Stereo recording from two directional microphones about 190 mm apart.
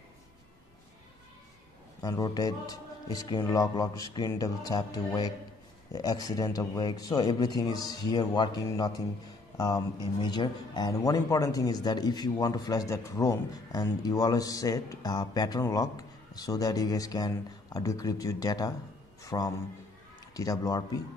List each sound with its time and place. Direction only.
2.0 s a man's voice: 20° left (ahead or behind)